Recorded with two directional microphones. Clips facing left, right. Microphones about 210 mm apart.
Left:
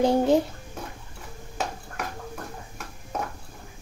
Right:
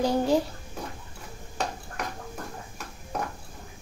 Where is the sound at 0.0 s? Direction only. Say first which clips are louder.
Left 3 dB; 25° left (ahead or behind).